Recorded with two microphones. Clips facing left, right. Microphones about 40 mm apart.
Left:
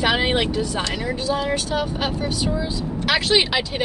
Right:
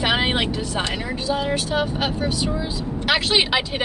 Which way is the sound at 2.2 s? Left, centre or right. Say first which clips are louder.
Even; centre.